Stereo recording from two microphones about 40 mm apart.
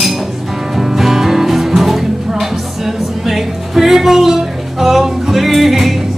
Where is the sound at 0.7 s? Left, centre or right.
Centre.